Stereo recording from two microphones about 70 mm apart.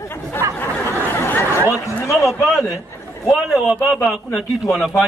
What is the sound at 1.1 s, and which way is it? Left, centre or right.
Chatter, left.